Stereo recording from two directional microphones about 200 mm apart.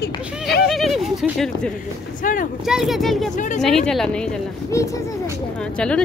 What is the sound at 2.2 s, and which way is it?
Speech, 40° left (ahead or behind).